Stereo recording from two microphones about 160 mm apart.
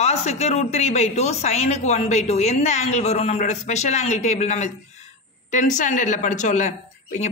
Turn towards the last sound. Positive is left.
turn(degrees=45)  # may be behind; listen again after turning